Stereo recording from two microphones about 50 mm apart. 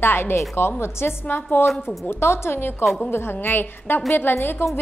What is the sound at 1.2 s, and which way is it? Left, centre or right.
Speech, left.